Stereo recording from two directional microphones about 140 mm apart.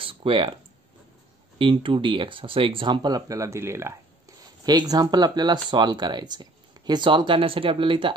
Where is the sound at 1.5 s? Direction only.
35° right (ahead or behind).